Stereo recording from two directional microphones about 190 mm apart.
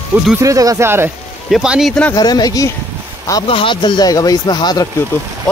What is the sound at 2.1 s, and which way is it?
Speech, 20° left (ahead or behind).